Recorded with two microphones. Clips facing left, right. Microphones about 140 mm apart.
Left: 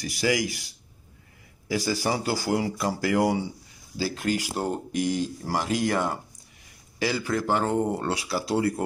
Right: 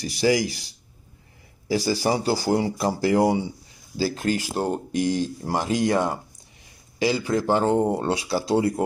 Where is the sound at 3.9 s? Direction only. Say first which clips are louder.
Right 3 dB; 35° right (ahead or behind).